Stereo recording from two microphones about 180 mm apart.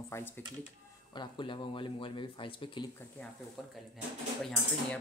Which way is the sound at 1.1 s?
25° left (ahead or behind).